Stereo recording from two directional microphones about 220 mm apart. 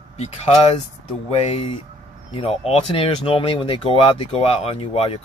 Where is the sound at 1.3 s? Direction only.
25° left (ahead or behind).